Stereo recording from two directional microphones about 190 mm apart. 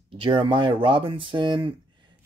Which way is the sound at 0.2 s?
25° right (ahead or behind).